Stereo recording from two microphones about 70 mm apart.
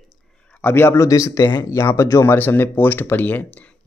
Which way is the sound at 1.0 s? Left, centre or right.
Left.